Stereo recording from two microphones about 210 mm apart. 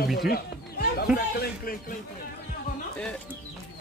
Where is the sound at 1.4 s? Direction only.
45° left (ahead or behind).